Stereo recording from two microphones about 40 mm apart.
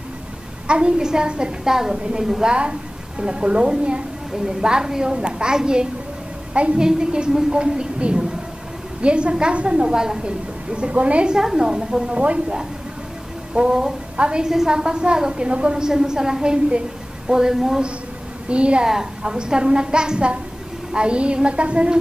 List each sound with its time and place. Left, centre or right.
0.7 s a child's voice: right
2.4 s a woman's voice: right
6.5 s a woman's voice: right
6.8 s a woman's voice: centre
10.2 s a woman's voice: right
11.2 s a child's voice: centre
12.2 s a woman's voice: right
13.6 s a woman's voice: right
18.5 s a woman's voice: right
18.9 s a woman's voice: centre